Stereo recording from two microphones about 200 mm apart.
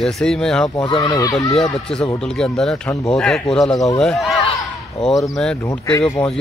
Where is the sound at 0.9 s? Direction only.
20° left (ahead or behind).